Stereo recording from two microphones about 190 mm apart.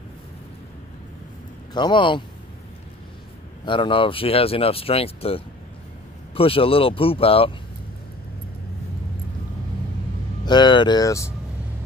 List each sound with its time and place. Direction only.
1.7 s speech: 25° left (ahead or behind)
3.6 s speech: 25° left (ahead or behind)
10.4 s speech: 25° left (ahead or behind)